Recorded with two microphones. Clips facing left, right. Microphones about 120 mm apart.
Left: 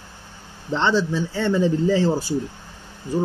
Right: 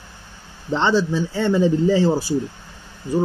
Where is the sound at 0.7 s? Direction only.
15° right (ahead or behind).